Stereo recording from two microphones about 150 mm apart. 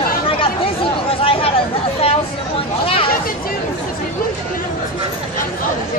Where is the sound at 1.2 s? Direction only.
40° left (ahead or behind).